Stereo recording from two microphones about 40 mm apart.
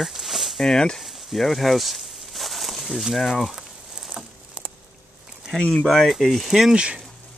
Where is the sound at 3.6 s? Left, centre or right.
Centre.